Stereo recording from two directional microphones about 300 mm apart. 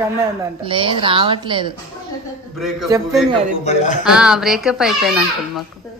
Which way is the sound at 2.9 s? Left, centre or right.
Centre.